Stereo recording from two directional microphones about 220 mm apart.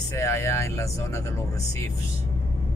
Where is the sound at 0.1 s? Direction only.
10° left (ahead or behind).